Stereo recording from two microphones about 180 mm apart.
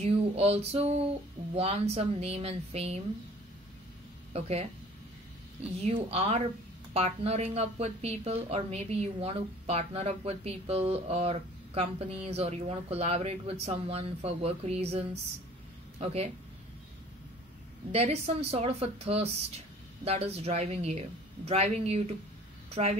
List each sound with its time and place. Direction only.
0.0 s a woman's voice: 35° right (ahead or behind)
4.3 s speech: 35° right (ahead or behind)
5.8 s a woman's voice: 35° right (ahead or behind)
17.9 s a woman's voice: 35° right (ahead or behind)